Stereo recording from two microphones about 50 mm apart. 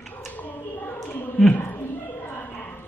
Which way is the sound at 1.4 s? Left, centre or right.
Centre.